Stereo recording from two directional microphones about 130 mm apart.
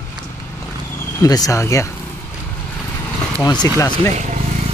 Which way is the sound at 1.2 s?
30° left (ahead or behind).